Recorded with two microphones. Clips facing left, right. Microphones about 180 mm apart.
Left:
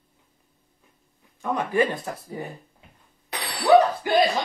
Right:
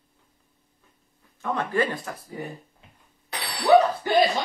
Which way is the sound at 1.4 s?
15° left (ahead or behind).